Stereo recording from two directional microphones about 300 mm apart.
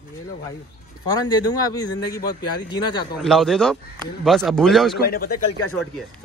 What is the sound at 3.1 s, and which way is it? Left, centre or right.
Speech, centre.